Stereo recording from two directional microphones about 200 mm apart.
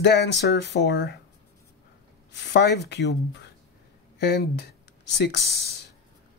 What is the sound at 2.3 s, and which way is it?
Speech, 60° left (ahead or behind).